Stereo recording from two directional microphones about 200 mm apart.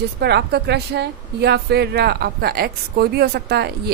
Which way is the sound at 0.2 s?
55° right (ahead or behind).